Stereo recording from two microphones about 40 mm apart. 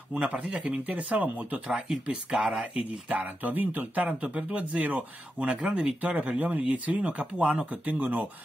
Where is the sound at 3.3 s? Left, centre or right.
Right.